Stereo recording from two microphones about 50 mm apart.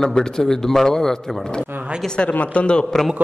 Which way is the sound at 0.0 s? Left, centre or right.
Centre.